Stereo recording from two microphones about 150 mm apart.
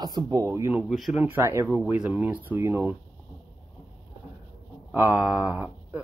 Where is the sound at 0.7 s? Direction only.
Centre (ahead or behind).